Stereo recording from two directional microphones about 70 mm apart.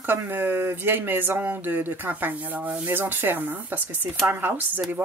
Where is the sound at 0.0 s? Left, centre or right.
Right.